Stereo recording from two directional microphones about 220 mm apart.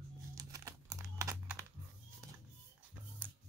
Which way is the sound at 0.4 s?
15° right (ahead or behind).